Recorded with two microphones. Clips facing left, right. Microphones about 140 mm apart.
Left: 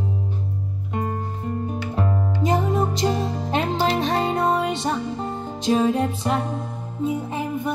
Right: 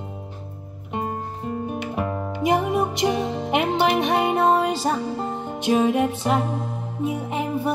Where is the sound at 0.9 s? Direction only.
20° right (ahead or behind).